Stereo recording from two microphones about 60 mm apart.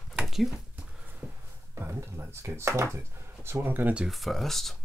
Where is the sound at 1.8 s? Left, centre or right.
Right.